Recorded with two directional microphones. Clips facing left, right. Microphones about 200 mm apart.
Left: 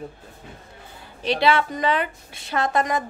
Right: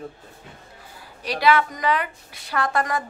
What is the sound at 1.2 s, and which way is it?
A woman's voice, 25° left (ahead or behind).